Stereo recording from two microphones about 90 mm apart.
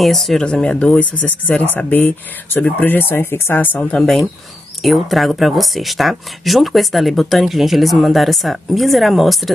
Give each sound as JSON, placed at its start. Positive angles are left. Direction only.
{"t": 0.0, "sound": "speech", "side_deg": 5}